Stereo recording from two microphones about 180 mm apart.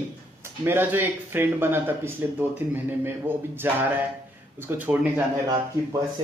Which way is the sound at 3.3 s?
10° right (ahead or behind).